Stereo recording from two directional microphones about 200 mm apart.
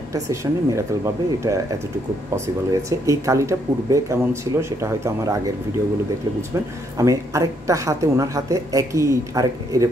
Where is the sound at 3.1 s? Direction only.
15° right (ahead or behind).